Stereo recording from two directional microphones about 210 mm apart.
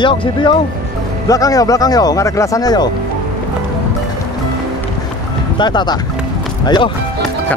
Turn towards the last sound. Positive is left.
turn(degrees=20)  # may be behind; listen again after turning